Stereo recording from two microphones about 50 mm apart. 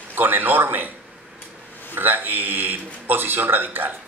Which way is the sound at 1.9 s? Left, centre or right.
Right.